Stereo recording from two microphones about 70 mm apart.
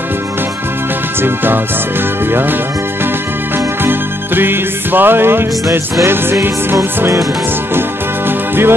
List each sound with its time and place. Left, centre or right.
1.2 s music: right
8.3 s music: right